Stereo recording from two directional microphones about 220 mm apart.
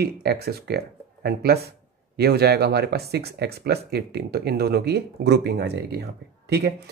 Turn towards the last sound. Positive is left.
turn(degrees=-50)  # may be behind; listen again after turning